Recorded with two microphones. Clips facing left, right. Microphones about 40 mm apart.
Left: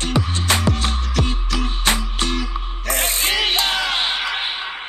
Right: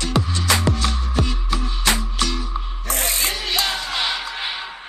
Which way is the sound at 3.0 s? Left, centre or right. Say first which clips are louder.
Left 4 dB; left.